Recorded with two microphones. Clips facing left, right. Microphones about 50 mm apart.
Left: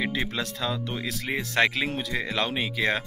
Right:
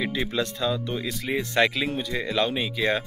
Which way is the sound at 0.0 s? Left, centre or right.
Left.